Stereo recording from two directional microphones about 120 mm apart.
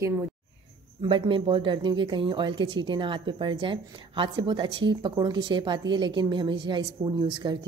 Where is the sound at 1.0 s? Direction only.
45° right (ahead or behind).